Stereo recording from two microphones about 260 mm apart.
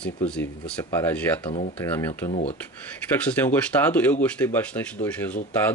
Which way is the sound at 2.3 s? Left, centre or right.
Left.